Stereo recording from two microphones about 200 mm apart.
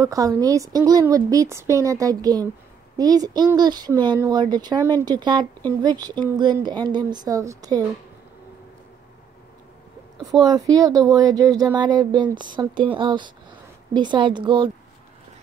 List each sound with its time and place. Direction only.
0.0 s a woman's voice: 15° right (ahead or behind)
10.4 s speech: 20° right (ahead or behind)